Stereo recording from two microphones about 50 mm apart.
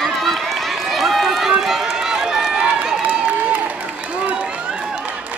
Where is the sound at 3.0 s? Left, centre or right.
Right.